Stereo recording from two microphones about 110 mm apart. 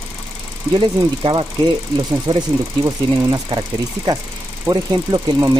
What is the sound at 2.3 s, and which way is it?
Speech, 35° right (ahead or behind).